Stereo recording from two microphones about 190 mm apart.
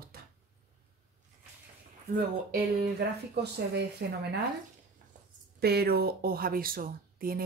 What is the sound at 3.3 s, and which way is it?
Speech, 60° right (ahead or behind).